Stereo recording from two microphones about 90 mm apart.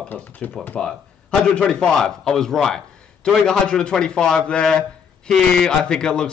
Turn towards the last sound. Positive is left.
turn(degrees=10)  # may be behind; listen again after turning